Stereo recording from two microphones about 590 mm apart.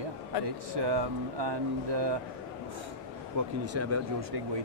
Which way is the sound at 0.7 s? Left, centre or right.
Right.